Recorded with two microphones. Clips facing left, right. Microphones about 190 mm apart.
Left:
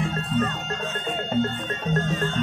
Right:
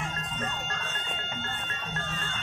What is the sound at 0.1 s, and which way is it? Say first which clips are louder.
Music: left 11 dB; 35° left (ahead or behind).